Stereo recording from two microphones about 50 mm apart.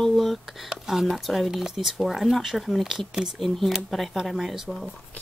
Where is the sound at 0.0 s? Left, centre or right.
Centre.